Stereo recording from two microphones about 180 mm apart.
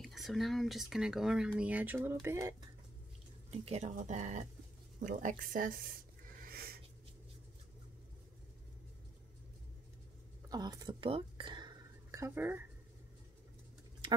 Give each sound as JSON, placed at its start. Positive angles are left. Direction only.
{"t": 0.0, "sound": "speech", "side_deg": 0}
{"t": 3.4, "sound": "speech", "side_deg": -35}
{"t": 6.4, "sound": "a sound", "side_deg": -60}
{"t": 10.5, "sound": "speech", "side_deg": -20}